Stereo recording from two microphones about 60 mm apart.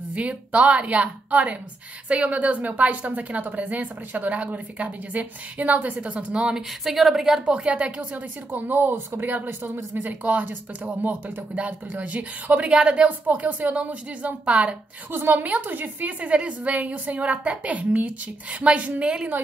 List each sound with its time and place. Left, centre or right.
0.1 s speech: right
6.8 s a woman's voice: centre
7.5 s speech: centre
15.0 s speech: right